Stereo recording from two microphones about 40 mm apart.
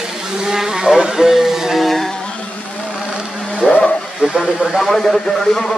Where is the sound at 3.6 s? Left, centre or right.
Left.